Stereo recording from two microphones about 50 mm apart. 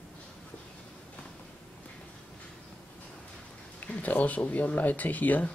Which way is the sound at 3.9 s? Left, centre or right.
Left.